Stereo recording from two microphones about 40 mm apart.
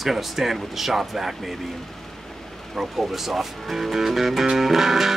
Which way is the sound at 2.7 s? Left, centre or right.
Centre.